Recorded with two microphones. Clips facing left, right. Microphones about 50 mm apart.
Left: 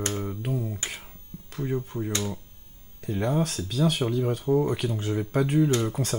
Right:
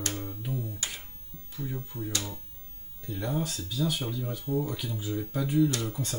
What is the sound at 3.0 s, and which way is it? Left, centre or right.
Speech, left.